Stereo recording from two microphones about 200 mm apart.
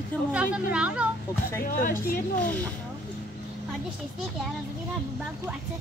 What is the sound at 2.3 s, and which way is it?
Speech, 10° left (ahead or behind).